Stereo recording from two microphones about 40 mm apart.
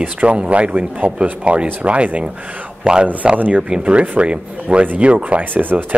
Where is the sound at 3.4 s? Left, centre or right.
Right.